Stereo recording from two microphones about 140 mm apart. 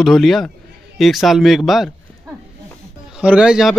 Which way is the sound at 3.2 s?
5° right (ahead or behind).